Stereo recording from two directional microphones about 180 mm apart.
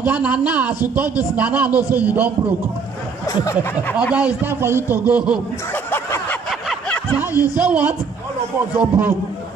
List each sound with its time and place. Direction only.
0.0 s a man's voice: 10° right (ahead or behind)
3.7 s a man's voice: 5° right (ahead or behind)
6.7 s snicker: 5° left (ahead or behind)
7.3 s speech: 20° left (ahead or behind)
7.6 s a man's voice: 5° right (ahead or behind)